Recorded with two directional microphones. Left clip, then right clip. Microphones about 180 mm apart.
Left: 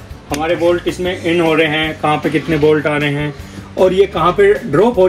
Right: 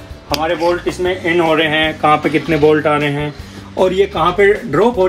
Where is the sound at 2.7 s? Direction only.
35° right (ahead or behind).